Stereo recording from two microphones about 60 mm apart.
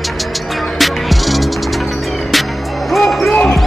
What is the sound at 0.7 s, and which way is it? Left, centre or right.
Music, centre.